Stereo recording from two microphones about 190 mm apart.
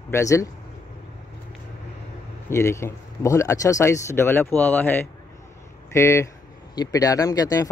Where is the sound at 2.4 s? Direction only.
15° left (ahead or behind).